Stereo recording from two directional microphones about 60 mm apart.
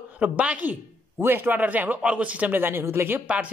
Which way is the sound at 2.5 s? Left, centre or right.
Right.